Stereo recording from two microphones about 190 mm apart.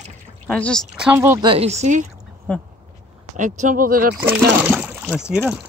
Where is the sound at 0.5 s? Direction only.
5° left (ahead or behind).